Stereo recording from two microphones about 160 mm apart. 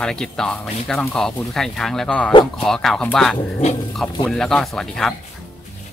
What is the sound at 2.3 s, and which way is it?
Speech, 30° left (ahead or behind).